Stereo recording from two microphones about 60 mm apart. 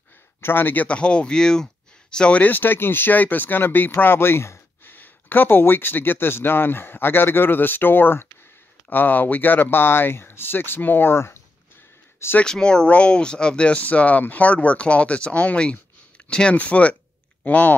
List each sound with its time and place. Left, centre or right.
0.4 s speech: left
0.8 s speech: centre
2.4 s speech: left
4.9 s speech: left
12.4 s speech: centre